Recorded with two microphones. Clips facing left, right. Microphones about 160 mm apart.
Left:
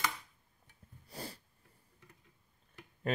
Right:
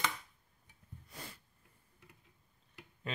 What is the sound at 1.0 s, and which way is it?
Sneeze, 35° left (ahead or behind).